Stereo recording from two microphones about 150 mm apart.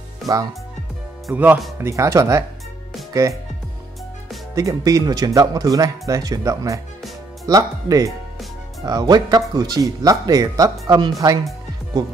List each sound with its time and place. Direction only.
1.3 s speech: 10° right (ahead or behind)
4.6 s speech: 20° right (ahead or behind)